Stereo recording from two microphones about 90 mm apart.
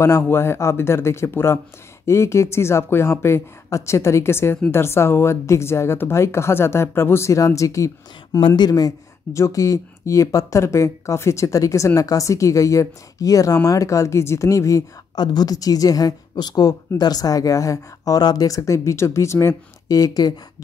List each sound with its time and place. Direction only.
0.0 s a woman's voice: 30° left (ahead or behind)
8.4 s speech: 70° left (ahead or behind)
8.6 s a woman's voice: 45° left (ahead or behind)